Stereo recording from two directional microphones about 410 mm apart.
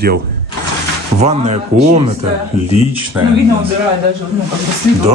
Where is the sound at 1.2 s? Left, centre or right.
Centre.